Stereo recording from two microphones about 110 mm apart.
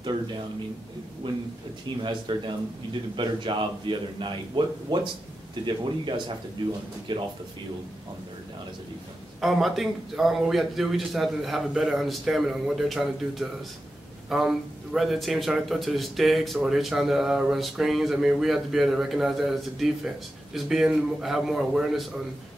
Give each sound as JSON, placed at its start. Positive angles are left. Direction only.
{"t": 1.2, "sound": "a man's voice", "side_deg": -50}
{"t": 9.4, "sound": "a man's voice", "side_deg": 0}